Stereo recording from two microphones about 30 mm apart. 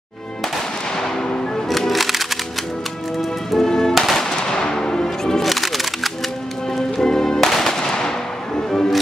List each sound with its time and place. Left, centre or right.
1.7 s music: centre
3.2 s music: centre
4.0 s gunshot: centre
5.4 s music: centre
7.0 s music: centre